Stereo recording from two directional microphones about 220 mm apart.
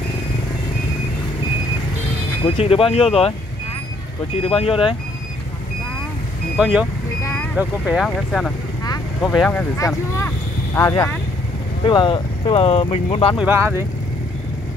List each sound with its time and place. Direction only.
2.4 s speech: 25° left (ahead or behind)
4.4 s speech: 25° left (ahead or behind)
6.5 s speech: 5° right (ahead or behind)
8.8 s vehicle: 15° left (ahead or behind)
9.3 s speech: 5° left (ahead or behind)
11.8 s speech: 20° left (ahead or behind)
13.4 s speech: 10° right (ahead or behind)